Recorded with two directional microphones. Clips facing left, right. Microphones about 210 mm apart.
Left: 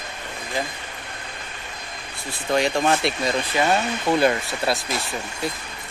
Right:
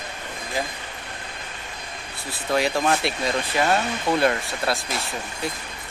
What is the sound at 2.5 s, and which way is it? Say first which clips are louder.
Speech: left 1 dB; 5° right (ahead or behind).